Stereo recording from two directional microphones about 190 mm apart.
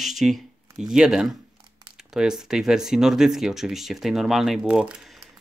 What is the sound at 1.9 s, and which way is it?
Speech, 5° right (ahead or behind).